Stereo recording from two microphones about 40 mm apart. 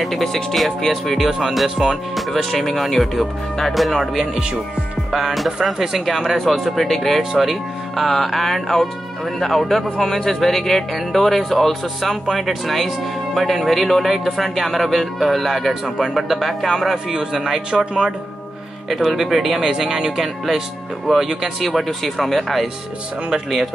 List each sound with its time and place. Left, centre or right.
0.0 s speech: centre
1.1 s speech: centre
5.6 s speech: centre
18.9 s speech: centre
23.3 s speech: centre